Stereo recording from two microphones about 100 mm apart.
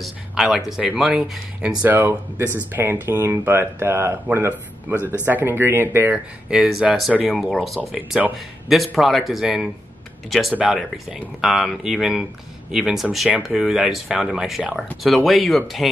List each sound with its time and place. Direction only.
0.0 s speech: 5° right (ahead or behind)
2.0 s speech: 25° right (ahead or behind)
6.1 s speech: 5° right (ahead or behind)